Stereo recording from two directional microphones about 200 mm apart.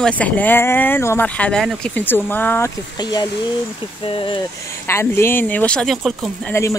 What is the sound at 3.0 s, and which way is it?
Speech, 20° left (ahead or behind).